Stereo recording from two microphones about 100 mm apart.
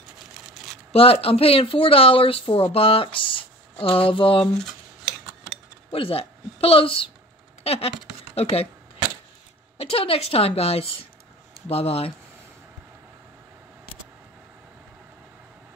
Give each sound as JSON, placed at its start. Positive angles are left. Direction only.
{"t": 0.9, "sound": "speech", "side_deg": 75}
{"t": 3.8, "sound": "a sound", "side_deg": 65}
{"t": 5.9, "sound": "speech", "side_deg": 70}
{"t": 7.6, "sound": "a woman's voice", "side_deg": 85}
{"t": 9.8, "sound": "a woman's voice", "side_deg": 75}
{"t": 11.7, "sound": "a woman's voice", "side_deg": 85}